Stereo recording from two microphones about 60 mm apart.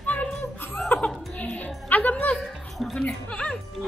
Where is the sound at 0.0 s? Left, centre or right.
Left.